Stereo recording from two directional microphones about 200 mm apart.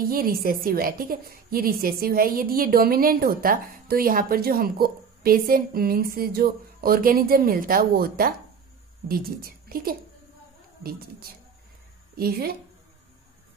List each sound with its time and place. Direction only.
0.1 s a woman's voice: 50° right (ahead or behind)